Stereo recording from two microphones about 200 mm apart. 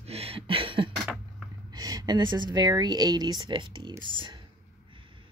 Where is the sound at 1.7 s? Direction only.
20° right (ahead or behind).